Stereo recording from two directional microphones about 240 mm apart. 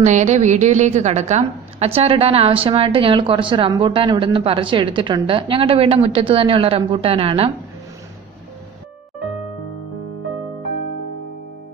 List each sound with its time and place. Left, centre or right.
0.0 s a woman's voice: right